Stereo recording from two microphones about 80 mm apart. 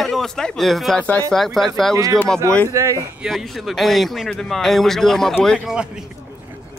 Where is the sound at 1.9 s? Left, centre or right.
Right.